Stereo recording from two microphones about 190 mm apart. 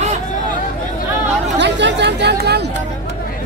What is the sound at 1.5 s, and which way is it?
Chatter, 65° right (ahead or behind).